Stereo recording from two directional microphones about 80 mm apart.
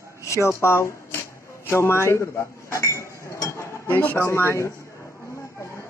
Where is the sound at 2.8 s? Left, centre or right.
Left.